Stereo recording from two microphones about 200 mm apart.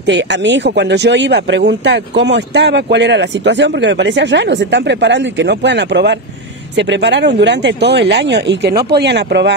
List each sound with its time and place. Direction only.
0.0 s speech: 60° right (ahead or behind)